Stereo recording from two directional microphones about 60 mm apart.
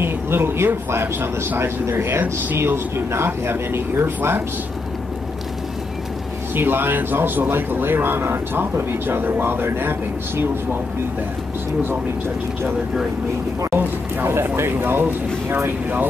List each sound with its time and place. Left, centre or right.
0.0 s speech: right
6.5 s speech: right
13.7 s speech: right